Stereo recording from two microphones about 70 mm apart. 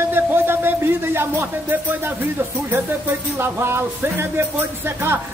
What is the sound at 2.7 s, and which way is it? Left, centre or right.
Speech, right.